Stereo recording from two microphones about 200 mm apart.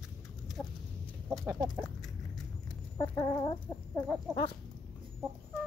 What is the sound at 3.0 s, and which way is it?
Chicken, 20° left (ahead or behind).